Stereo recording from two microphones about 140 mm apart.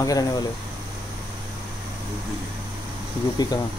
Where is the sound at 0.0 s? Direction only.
25° left (ahead or behind).